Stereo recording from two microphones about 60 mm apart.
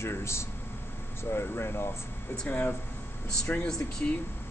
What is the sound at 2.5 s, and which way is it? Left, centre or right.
Speech, left.